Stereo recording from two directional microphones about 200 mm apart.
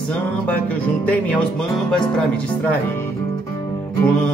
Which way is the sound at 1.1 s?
5° left (ahead or behind).